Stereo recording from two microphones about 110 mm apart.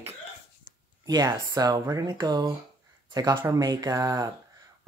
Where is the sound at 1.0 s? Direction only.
35° right (ahead or behind).